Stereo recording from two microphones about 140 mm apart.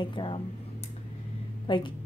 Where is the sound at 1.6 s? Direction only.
35° left (ahead or behind).